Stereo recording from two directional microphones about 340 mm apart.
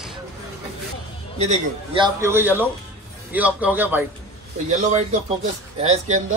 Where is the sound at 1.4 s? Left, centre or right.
Centre.